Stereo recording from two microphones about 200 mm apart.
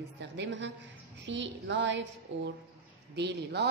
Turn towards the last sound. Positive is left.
turn(degrees=-60)  # may be behind; listen again after turning